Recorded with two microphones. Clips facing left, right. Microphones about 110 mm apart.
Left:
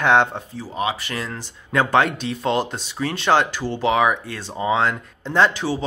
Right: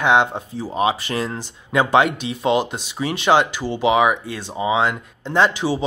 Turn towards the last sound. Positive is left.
turn(degrees=-10)  # may be behind; listen again after turning